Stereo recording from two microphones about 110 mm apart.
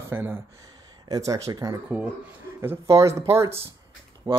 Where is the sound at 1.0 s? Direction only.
35° right (ahead or behind).